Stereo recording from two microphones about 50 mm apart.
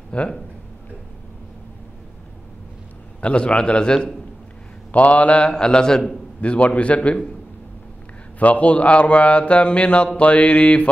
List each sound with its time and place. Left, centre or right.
0.1 s a man's voice: left
3.2 s a man's voice: left
4.9 s a man's voice: left
5.5 s a man's voice: centre
6.4 s a man's voice: left
8.4 s a man's voice: left